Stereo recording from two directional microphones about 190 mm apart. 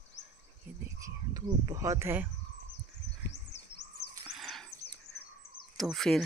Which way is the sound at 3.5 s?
65° left (ahead or behind).